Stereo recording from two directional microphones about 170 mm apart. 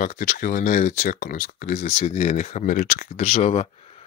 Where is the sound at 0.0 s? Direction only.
50° left (ahead or behind).